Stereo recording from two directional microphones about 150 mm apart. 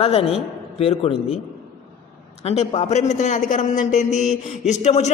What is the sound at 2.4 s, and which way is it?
A man's voice, 45° left (ahead or behind).